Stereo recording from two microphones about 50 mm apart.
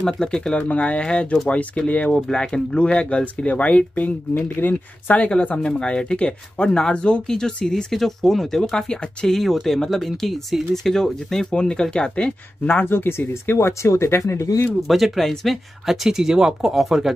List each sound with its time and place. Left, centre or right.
0.0 s speech: centre
0.6 s speech: left
2.3 s speech: centre
4.3 s speech: left
5.6 s speech: centre
12.8 s speech: left
13.5 s speech: left
14.9 s speech: centre